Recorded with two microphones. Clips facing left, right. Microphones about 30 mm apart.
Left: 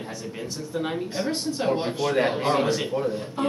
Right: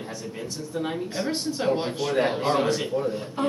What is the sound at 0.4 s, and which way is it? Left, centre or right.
A man's voice, centre.